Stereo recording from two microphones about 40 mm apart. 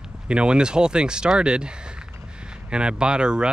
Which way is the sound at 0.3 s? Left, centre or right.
Right.